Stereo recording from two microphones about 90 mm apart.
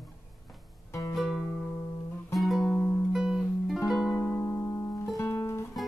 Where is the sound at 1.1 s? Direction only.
Centre (ahead or behind).